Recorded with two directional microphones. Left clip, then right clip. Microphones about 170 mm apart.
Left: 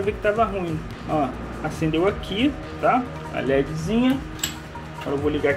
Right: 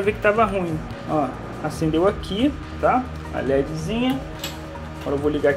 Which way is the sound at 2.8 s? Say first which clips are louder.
Right 1 dB; centre (ahead or behind).